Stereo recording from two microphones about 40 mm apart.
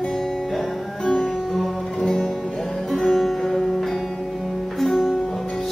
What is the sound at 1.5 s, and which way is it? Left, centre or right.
Guitar, centre.